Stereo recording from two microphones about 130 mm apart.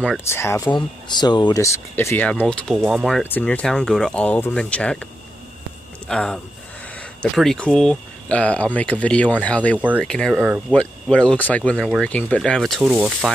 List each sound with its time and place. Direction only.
0.3 s speech: 20° left (ahead or behind)
0.7 s speech: 35° left (ahead or behind)
1.6 s speech: 20° left (ahead or behind); by 3.2 s centre (ahead or behind)
3.2 s speech: 10° left (ahead or behind)
6.0 s speech: 5° left (ahead or behind)
12.8 s speech: 10° right (ahead or behind)